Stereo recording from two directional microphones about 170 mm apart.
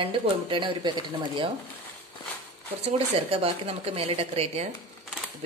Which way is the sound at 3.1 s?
35° right (ahead or behind).